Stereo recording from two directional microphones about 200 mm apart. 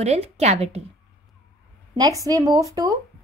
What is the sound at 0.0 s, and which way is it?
Speech, 35° right (ahead or behind).